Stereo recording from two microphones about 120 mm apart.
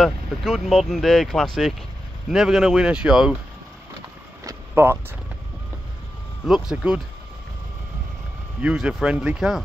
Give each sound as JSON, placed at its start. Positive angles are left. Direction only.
{"t": 0.0, "sound": "speech", "side_deg": 0}
{"t": 4.5, "sound": "vehicle", "side_deg": -20}
{"t": 6.4, "sound": "speech", "side_deg": -5}
{"t": 8.5, "sound": "speech", "side_deg": -5}